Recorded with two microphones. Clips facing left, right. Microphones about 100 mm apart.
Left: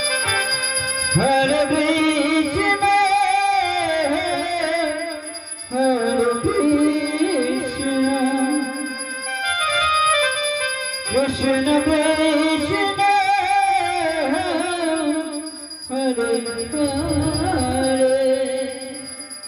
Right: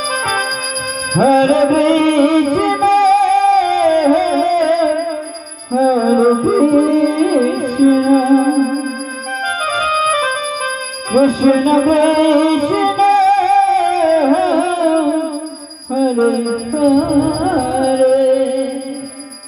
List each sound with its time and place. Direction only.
0.1 s music: 45° right (ahead or behind)